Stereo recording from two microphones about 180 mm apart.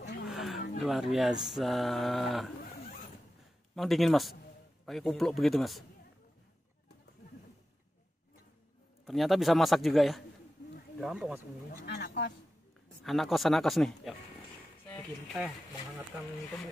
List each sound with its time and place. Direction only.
0.3 s a sound: centre (ahead or behind)
0.7 s speech: centre (ahead or behind)
3.7 s speech: centre (ahead or behind)
9.0 s speech: centre (ahead or behind)
11.8 s speech: 60° left (ahead or behind)
13.0 s speech: centre (ahead or behind)